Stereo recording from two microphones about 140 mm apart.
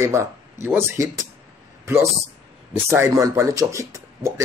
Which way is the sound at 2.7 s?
20° right (ahead or behind).